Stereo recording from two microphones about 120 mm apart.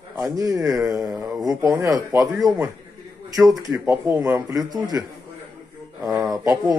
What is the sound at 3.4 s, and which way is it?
Speech, 10° right (ahead or behind).